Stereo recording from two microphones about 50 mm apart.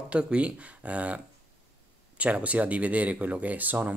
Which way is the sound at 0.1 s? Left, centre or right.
Right.